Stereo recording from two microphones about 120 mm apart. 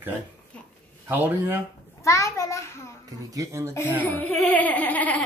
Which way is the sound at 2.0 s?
25° left (ahead or behind).